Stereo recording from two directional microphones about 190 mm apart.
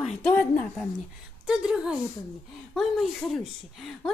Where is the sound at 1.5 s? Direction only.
5° right (ahead or behind).